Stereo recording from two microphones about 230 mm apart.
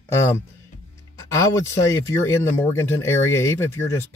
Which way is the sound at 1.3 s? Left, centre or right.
Centre.